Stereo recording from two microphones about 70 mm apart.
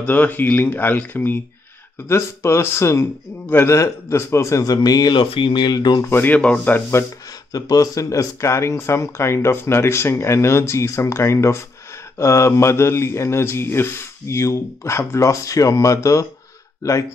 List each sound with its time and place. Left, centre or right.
0.0 s speech: left
2.0 s speech: left
3.4 s speech: left
3.7 s speech: left
5.6 s speech: left
6.0 s speech: left
7.5 s speech: left